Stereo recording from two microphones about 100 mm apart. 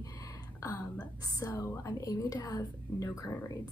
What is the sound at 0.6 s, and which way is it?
Speech, 35° left (ahead or behind).